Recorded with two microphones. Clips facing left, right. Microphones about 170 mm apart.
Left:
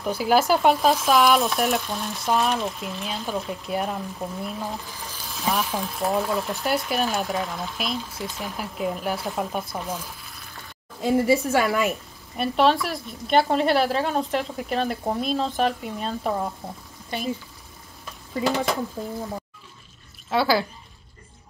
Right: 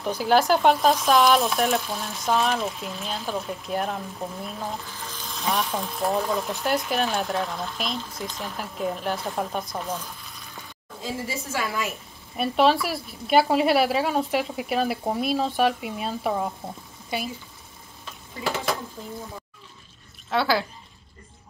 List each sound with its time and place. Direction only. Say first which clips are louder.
0.0 s speech: even; 5° left (ahead or behind)
11.1 s a woman's voice: left 12 dB; 60° left (ahead or behind)
12.4 s speech: even; centre (ahead or behind)
20.2 s speech: left 2 dB; 5° left (ahead or behind)